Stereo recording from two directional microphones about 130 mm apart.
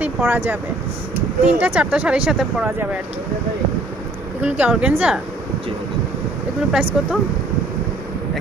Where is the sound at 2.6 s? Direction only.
15° right (ahead or behind).